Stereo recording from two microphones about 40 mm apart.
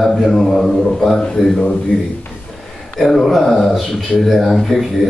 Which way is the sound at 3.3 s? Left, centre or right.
Centre.